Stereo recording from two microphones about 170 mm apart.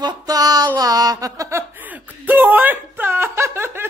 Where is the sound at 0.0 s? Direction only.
20° right (ahead or behind).